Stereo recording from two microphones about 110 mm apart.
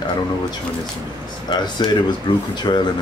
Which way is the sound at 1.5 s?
40° left (ahead or behind).